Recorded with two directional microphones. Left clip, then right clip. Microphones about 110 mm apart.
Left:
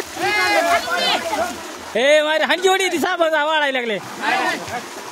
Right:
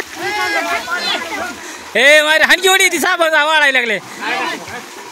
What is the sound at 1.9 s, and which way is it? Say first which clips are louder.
A man's voice: right 6 dB; 10° right (ahead or behind).